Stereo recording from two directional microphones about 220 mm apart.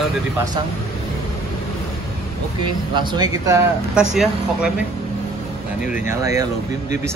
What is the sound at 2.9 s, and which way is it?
Speech, 20° right (ahead or behind).